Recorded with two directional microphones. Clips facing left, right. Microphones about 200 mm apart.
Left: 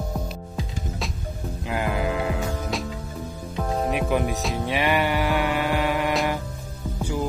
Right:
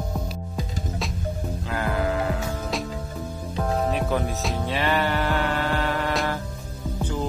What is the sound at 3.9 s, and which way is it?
Music, 15° left (ahead or behind).